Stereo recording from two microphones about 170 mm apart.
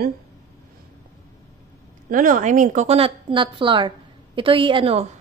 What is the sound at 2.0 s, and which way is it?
A woman's voice, 50° right (ahead or behind).